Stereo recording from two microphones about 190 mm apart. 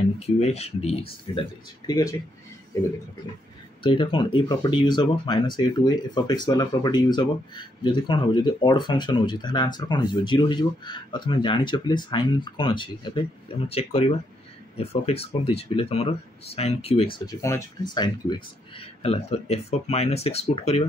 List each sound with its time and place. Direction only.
0.4 s speech: 35° left (ahead or behind)
3.8 s speech: 25° left (ahead or behind)
17.3 s speech: 15° left (ahead or behind); by 20.8 s 35° left (ahead or behind)